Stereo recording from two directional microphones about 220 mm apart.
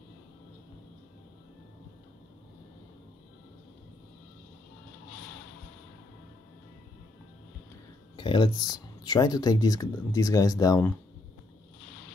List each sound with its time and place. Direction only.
8.2 s speech: 20° left (ahead or behind)